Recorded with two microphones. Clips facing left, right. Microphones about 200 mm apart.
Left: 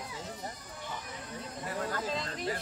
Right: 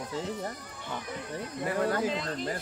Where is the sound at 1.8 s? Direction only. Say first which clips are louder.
Right 8 dB; 65° right (ahead or behind).